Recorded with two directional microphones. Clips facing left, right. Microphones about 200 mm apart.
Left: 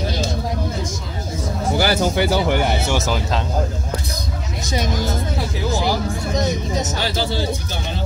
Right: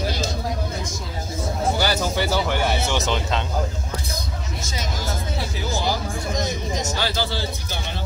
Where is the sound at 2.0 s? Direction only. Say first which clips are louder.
Left 5 dB; 15° left (ahead or behind).